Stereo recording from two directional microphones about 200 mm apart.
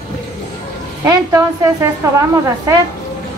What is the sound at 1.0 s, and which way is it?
A woman's voice, 15° right (ahead or behind).